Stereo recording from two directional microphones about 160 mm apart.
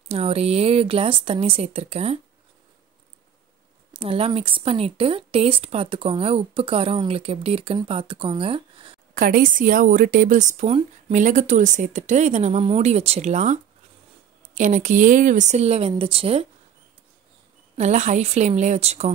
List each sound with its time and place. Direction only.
0.1 s speech: 40° right (ahead or behind)
3.9 s speech: 35° right (ahead or behind)
9.1 s speech: 65° right (ahead or behind); by 16.4 s 35° right (ahead or behind)
17.7 s speech: 45° right (ahead or behind)